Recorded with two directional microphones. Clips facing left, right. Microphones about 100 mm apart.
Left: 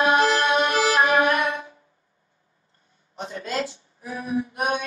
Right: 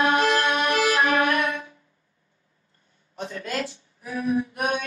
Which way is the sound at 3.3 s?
25° left (ahead or behind).